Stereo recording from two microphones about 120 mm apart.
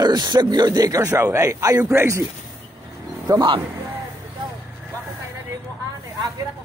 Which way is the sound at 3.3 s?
30° right (ahead or behind).